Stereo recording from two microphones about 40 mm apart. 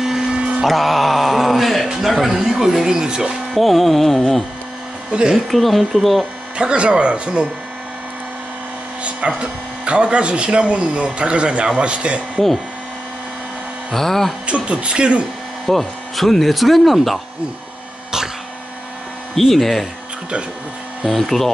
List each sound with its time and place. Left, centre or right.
0.0 s a sound: centre
0.7 s mantra: centre
2.0 s speech: centre
3.5 s speech: centre
5.1 s speech: right
5.5 s speech: centre
6.6 s speech: right
9.0 s speech: right
13.9 s speech: centre
14.4 s speech: right
15.6 s speech: centre
19.3 s speech: centre
21.1 s speech: centre